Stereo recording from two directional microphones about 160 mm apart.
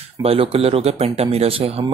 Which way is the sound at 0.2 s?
35° right (ahead or behind).